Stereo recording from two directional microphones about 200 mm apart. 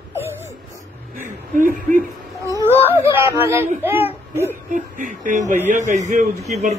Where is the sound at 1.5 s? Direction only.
40° right (ahead or behind).